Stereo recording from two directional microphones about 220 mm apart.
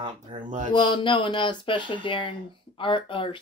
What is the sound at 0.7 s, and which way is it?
Speech, 20° left (ahead or behind).